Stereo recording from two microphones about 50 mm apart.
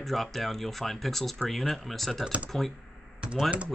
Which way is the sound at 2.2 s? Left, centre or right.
Right.